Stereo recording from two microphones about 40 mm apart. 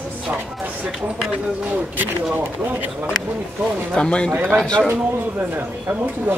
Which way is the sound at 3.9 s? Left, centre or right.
Left.